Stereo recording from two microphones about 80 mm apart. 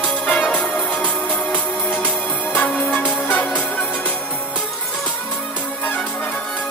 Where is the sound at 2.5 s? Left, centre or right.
Centre.